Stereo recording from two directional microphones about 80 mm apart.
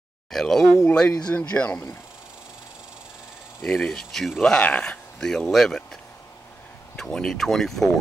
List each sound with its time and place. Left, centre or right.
0.3 s speech: centre
0.8 s speech: centre
3.6 s speech: centre
7.0 s speech: centre